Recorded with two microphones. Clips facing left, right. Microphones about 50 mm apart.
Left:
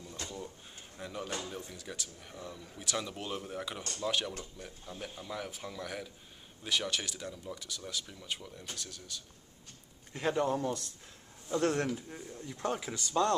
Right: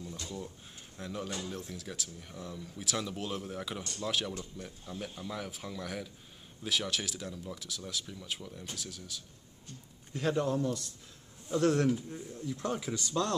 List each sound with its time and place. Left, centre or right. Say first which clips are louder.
0.9 s speech: even; centre
10.1 s a man's voice: even; centre
12.6 s speech: left 1 dB; centre